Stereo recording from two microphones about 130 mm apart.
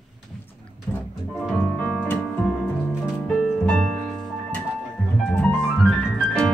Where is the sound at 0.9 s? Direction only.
15° left (ahead or behind).